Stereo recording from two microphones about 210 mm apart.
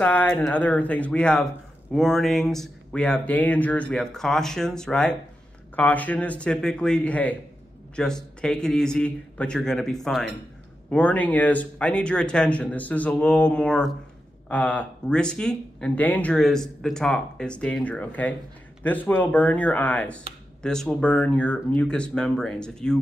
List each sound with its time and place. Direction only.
0.0 s a man's voice: 5° left (ahead or behind)